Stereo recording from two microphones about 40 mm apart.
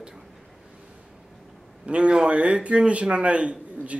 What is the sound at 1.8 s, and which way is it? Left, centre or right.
A man's voice, right.